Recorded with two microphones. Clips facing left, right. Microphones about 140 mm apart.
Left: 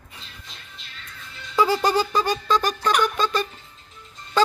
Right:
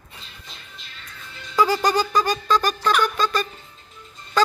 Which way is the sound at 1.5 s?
25° left (ahead or behind).